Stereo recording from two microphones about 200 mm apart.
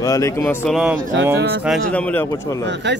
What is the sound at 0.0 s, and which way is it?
Speech, 15° left (ahead or behind).